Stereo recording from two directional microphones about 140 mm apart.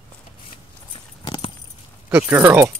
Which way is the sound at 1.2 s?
35° left (ahead or behind).